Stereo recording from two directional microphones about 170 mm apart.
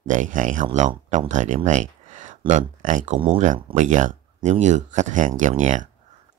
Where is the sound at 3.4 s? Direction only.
45° right (ahead or behind).